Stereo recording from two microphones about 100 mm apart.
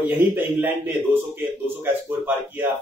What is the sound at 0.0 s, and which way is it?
Speech, 20° right (ahead or behind).